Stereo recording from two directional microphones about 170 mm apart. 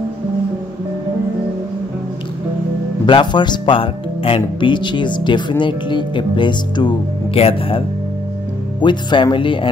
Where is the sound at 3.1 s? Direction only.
30° left (ahead or behind).